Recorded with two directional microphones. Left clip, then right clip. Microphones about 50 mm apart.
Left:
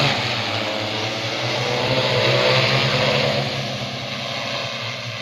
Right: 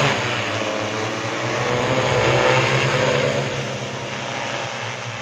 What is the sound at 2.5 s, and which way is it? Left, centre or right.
Vehicle, centre.